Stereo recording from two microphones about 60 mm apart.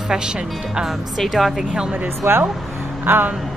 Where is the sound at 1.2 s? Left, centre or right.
Centre.